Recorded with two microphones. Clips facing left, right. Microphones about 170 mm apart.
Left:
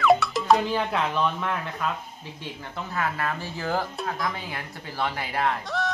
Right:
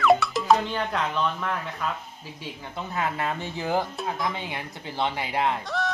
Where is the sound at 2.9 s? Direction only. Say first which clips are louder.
Right 1 dB; 20° right (ahead or behind).